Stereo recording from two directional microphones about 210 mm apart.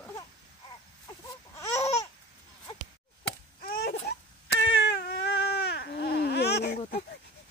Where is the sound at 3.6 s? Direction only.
45° left (ahead or behind).